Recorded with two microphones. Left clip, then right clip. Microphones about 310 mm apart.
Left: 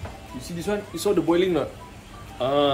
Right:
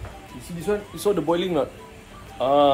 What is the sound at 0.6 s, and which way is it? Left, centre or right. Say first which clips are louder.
Speech: right 2 dB; centre.